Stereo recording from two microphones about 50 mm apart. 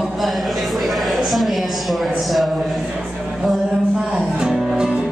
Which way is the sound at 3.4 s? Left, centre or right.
Centre.